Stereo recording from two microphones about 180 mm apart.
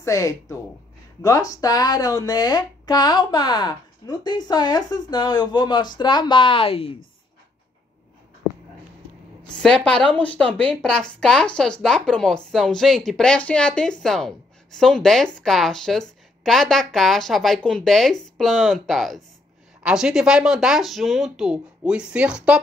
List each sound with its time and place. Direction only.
0.0 s speech: 20° left (ahead or behind)
8.4 s a sound: 5° right (ahead or behind)
9.6 s speech: 5° left (ahead or behind)